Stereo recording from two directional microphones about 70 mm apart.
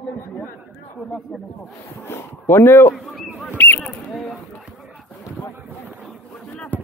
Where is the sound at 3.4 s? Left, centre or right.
Left.